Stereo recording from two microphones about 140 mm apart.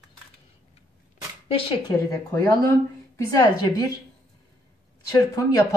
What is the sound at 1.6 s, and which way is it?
Speech, 40° left (ahead or behind).